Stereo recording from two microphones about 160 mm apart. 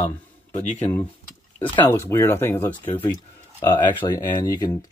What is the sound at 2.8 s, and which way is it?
Speech, 35° left (ahead or behind).